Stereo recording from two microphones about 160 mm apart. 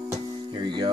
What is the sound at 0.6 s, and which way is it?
Speech, 30° right (ahead or behind).